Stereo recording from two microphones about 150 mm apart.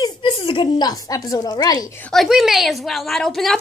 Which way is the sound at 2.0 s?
Centre (ahead or behind).